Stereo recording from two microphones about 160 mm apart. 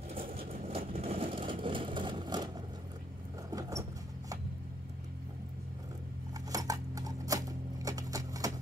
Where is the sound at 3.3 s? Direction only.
20° right (ahead or behind).